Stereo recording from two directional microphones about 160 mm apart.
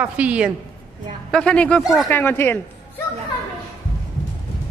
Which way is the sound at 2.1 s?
15° left (ahead or behind).